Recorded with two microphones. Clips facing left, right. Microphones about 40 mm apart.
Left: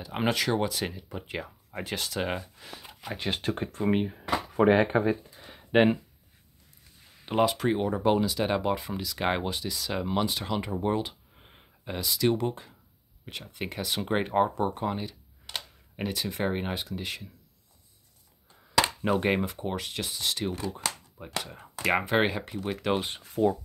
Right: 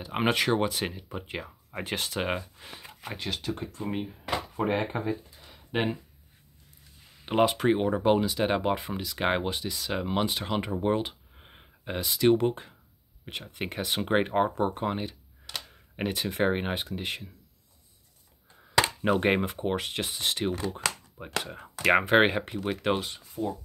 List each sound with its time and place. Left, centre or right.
0.0 s speech: right
1.8 s speech: right
3.3 s speech: left
4.6 s speech: left
5.5 s a sound: left
7.2 s speech: centre
19.0 s speech: centre
22.6 s speech: centre